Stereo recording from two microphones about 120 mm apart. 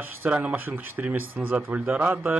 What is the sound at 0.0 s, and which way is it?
Speech, 15° right (ahead or behind).